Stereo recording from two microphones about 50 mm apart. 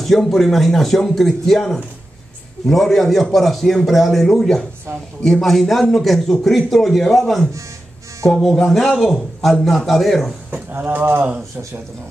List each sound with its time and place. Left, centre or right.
0.0 s a man's voice: centre
8.6 s a man's voice: centre
10.7 s speech: right